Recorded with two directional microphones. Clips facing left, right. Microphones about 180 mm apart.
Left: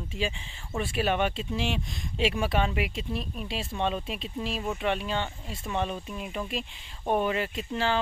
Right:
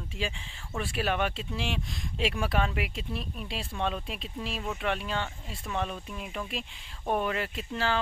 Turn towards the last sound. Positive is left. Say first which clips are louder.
# left 2 dB
turn(degrees=0)  # may be behind; listen again after turning